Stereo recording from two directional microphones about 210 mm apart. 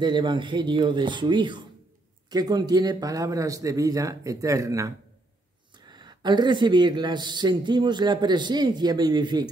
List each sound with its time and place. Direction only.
0.0 s a man's voice: 20° right (ahead or behind)